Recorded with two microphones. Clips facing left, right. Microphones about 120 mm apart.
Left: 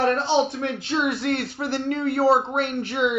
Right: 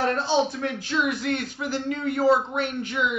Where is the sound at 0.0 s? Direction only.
20° left (ahead or behind).